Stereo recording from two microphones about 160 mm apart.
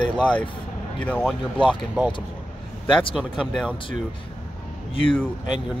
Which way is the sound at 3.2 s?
Centre (ahead or behind).